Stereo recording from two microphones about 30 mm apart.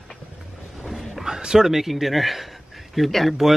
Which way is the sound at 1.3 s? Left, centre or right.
Right.